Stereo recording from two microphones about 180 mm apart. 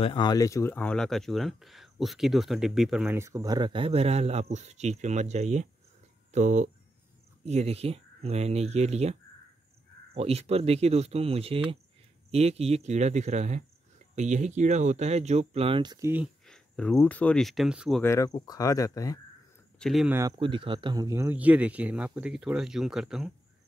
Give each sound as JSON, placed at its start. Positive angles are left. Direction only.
{"t": 0.0, "sound": "speech", "side_deg": 25}
{"t": 3.2, "sound": "speech", "side_deg": -15}
{"t": 16.4, "sound": "speech", "side_deg": 5}
{"t": 18.0, "sound": "speech", "side_deg": 15}
{"t": 19.8, "sound": "speech", "side_deg": 0}
{"t": 20.1, "sound": "speech", "side_deg": -15}
{"t": 20.3, "sound": "speech", "side_deg": -30}